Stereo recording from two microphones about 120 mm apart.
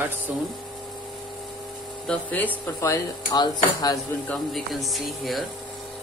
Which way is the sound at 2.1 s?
5° left (ahead or behind).